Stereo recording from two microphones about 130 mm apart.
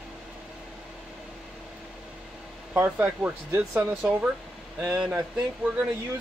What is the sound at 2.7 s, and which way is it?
Speech, 15° right (ahead or behind).